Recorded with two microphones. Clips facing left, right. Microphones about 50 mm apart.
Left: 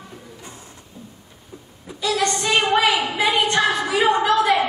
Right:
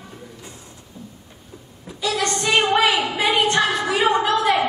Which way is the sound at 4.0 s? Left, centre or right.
Centre.